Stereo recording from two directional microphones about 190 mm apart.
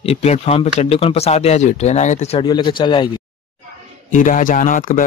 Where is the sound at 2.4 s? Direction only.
25° left (ahead or behind).